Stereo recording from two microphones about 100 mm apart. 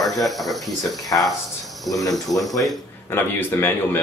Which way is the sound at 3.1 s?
20° left (ahead or behind).